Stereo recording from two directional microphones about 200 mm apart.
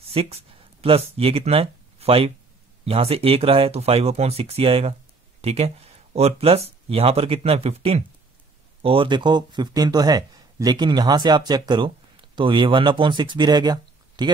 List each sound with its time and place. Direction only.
0.1 s speech: 30° right (ahead or behind)